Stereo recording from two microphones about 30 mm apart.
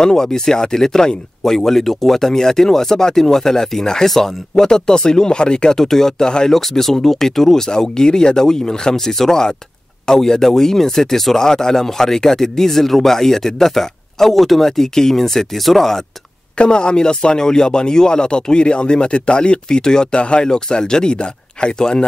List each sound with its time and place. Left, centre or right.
0.0 s speech: centre
5.8 s speech: centre
6.5 s speech: centre
7.9 s speech: left; by 14.7 s centre
14.8 s speech: centre
16.5 s speech: left